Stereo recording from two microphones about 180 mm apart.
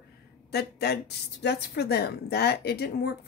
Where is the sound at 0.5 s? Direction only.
65° left (ahead or behind).